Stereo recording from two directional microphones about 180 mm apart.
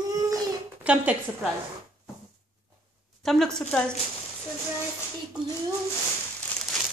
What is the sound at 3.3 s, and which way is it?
Speech, 5° left (ahead or behind).